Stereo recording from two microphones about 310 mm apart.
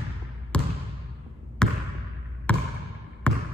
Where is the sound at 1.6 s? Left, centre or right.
Centre.